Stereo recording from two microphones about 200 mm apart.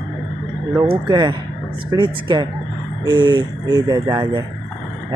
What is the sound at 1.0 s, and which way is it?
Speech, 20° right (ahead or behind).